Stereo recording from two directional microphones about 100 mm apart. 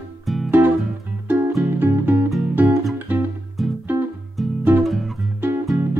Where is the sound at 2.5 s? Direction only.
20° right (ahead or behind).